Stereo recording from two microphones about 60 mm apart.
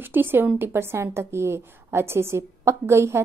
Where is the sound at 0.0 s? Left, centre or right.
Right.